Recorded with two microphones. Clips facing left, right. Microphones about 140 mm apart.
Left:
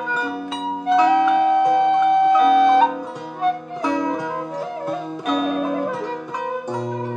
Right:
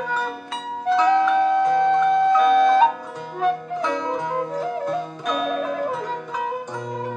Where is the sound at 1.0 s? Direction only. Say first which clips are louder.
Left 2 dB; 15° left (ahead or behind).